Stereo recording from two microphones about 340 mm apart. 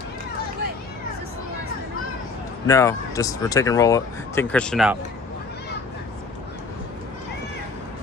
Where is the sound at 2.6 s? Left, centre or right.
Centre.